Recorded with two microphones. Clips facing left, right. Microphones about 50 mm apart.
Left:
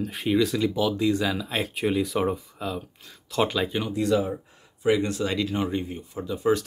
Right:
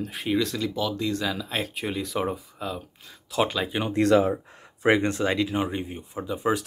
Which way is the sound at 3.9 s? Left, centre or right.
Right.